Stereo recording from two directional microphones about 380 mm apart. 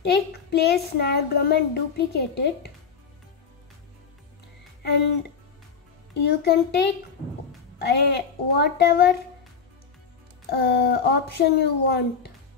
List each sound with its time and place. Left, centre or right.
0.0 s a child's voice: left
6.1 s a child's voice: left
7.8 s a child's voice: left
10.5 s a child's voice: left